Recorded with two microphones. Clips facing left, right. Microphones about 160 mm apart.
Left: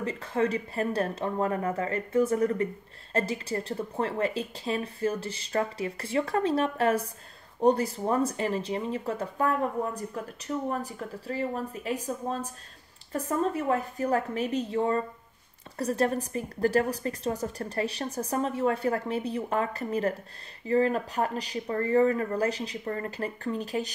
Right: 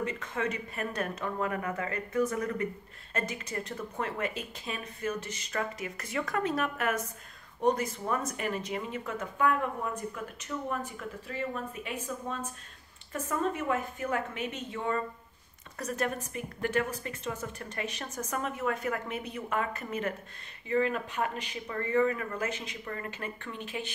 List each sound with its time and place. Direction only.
0.0 s speech: 35° left (ahead or behind)